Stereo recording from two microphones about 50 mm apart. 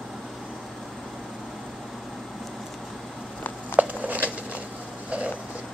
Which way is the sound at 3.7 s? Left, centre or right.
Right.